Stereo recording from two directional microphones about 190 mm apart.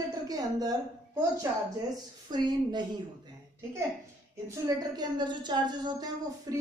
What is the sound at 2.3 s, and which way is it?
Speech, 20° right (ahead or behind).